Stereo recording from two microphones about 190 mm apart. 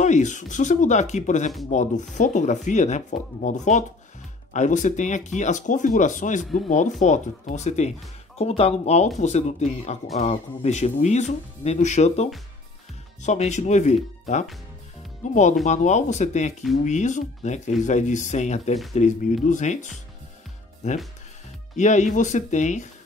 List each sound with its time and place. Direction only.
0.0 s speech: 40° left (ahead or behind)
15.6 s speech: 40° left (ahead or behind)
21.7 s speech: 40° left (ahead or behind)